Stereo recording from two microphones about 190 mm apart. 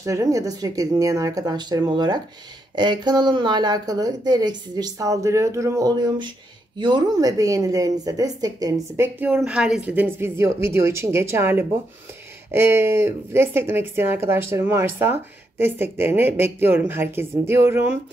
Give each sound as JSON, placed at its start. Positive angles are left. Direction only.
{"t": 0.0, "sound": "speech", "side_deg": -15}